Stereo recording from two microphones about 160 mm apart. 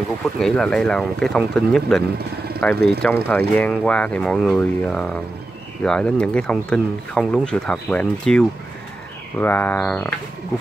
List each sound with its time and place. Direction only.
0.4 s speech: 5° left (ahead or behind)